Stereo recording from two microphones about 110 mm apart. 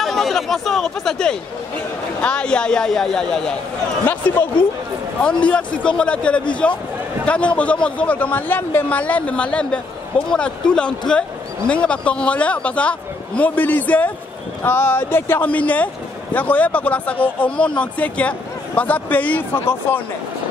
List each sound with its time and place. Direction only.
0.0 s a man's voice: centre (ahead or behind)
5.2 s speech: 10° left (ahead or behind)